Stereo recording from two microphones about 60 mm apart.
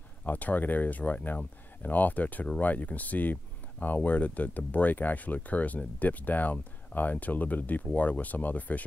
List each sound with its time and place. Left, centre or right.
0.2 s speech: left